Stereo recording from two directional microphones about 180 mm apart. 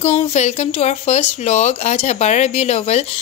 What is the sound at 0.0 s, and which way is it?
Speech, 35° left (ahead or behind).